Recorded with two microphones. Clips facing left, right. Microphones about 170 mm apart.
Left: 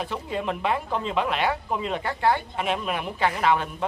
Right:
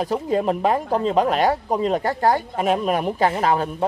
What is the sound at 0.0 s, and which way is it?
A man's voice, 40° right (ahead or behind).